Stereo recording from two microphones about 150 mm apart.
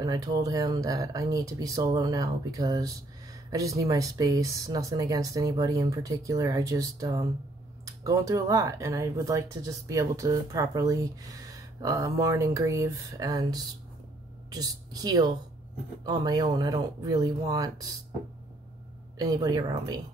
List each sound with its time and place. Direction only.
0.0 s speech: 25° right (ahead or behind)
19.1 s speech: 25° right (ahead or behind)